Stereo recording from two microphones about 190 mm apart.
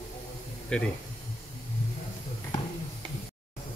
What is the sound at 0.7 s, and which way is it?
Speech, 5° left (ahead or behind).